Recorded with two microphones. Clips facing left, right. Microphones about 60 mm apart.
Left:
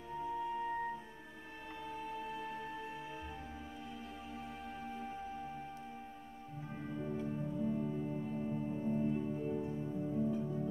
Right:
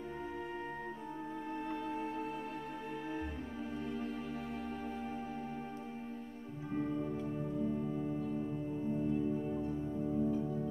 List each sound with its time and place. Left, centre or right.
0.3 s music: right
6.9 s music: centre
8.2 s music: centre
9.3 s music: centre